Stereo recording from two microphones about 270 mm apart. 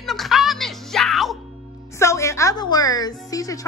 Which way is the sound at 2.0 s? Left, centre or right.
Centre.